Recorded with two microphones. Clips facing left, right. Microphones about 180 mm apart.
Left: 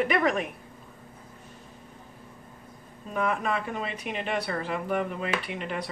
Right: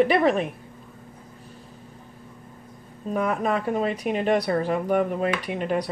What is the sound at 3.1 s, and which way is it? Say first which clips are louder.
Speech: right 4 dB; 40° right (ahead or behind).